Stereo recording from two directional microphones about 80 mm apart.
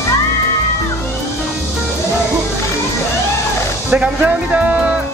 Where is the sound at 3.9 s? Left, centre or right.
Centre.